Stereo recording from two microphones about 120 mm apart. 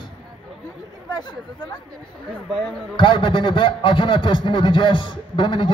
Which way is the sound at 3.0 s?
45° left (ahead or behind).